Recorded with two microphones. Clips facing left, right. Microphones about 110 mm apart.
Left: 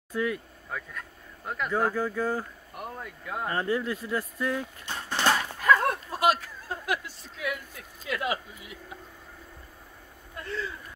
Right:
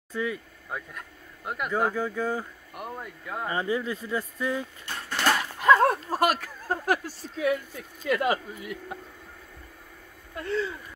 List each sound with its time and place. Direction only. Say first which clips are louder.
0.1 s speech: left 1 dB; centre (ahead or behind)
0.7 s speech: right 1 dB; 10° right (ahead or behind)
4.8 s a sound: even; 20° left (ahead or behind)
5.6 s whip: right 5 dB; 25° right (ahead or behind)
6.0 s speech: even; 45° right (ahead or behind)